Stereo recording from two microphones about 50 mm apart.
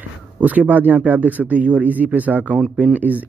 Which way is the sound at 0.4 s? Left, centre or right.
Right.